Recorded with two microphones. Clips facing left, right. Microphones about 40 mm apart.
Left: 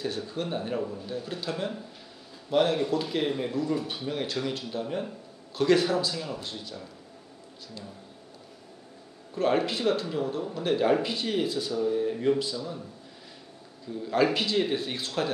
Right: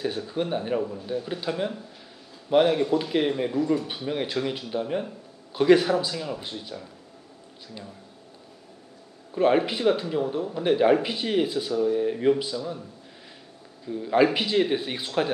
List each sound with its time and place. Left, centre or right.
0.3 s speech: centre
9.3 s speech: centre
13.8 s speech: centre